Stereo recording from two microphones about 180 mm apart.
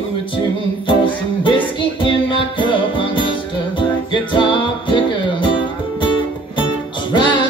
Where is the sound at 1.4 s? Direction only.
30° left (ahead or behind).